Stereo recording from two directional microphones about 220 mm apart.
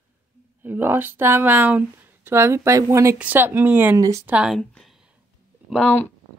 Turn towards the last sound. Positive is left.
turn(degrees=5)  # may be behind; listen again after turning